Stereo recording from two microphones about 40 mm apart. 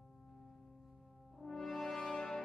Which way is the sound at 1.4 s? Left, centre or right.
Centre.